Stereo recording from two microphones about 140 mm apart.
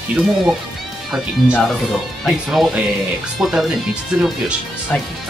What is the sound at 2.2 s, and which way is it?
Speech, centre (ahead or behind).